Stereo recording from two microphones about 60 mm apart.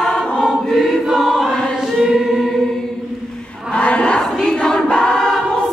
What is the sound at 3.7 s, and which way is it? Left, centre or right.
Crowd, centre.